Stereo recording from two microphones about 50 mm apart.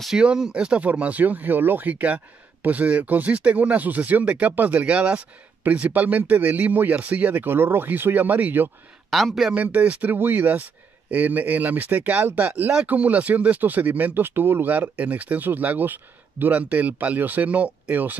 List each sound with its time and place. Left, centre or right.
0.2 s speech: right
1.9 s speech: right
4.8 s speech: right
7.4 s speech: right
9.1 s speech: centre
9.5 s speech: right
16.6 s speech: right